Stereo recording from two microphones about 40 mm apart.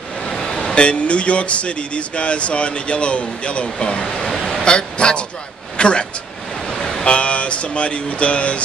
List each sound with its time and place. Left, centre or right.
0.2 s vehicle: centre
0.7 s speech: left
3.8 s a sound: centre
4.6 s speech: left
6.7 s vehicle: centre
7.1 s speech: left